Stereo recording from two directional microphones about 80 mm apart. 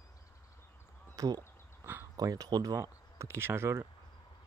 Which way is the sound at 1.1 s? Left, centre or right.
Right.